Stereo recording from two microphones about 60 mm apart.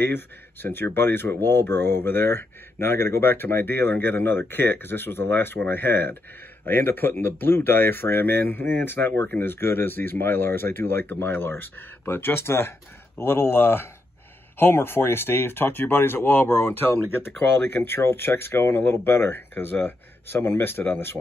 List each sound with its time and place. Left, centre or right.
0.0 s speech: left